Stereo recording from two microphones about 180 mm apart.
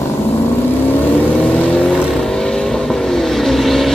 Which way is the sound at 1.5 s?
5° left (ahead or behind).